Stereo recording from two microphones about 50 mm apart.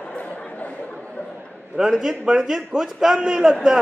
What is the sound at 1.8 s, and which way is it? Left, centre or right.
A man's voice, centre.